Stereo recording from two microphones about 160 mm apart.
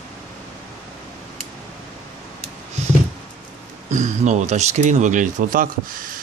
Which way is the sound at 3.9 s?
50° right (ahead or behind).